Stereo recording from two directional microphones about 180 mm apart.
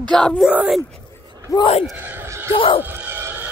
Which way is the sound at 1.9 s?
10° right (ahead or behind).